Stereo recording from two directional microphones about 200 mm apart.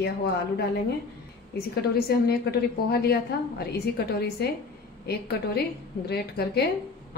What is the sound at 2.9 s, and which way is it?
Speech, 50° left (ahead or behind).